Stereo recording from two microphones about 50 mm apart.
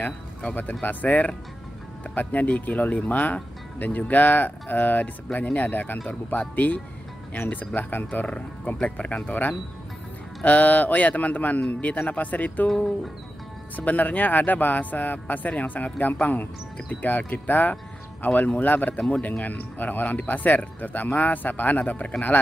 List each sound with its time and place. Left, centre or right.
0.0 s speech: left
13.7 s speech: left
18.9 s speech: left